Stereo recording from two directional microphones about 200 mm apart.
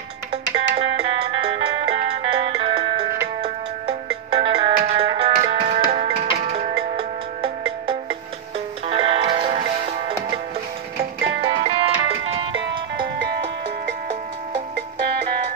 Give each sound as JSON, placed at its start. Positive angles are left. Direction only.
{"t": 0.7, "sound": "music", "side_deg": -25}
{"t": 11.4, "sound": "music", "side_deg": -30}
{"t": 13.2, "sound": "music", "side_deg": -60}